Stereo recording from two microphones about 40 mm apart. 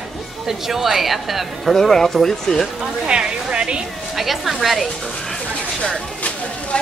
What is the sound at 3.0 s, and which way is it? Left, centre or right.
Speech, right.